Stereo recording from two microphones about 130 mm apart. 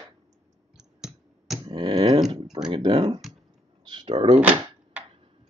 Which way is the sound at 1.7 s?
30° right (ahead or behind).